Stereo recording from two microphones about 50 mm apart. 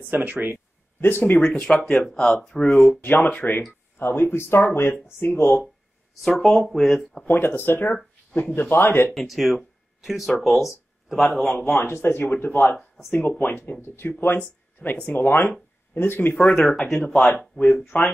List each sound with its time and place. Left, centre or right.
0.1 s speech: right
1.0 s speech: left
1.4 s speech: left
2.1 s speech: centre
3.0 s speech: left
4.0 s speech: left
6.2 s speech: centre
7.2 s speech: left
9.1 s speech: centre
11.6 s speech: left
16.3 s speech: centre
17.6 s speech: left